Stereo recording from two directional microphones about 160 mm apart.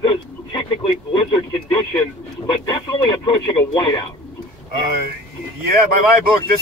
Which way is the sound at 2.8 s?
30° left (ahead or behind).